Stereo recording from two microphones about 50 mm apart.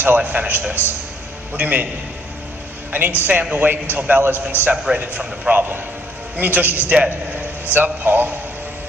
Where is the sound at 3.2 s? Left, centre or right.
Right.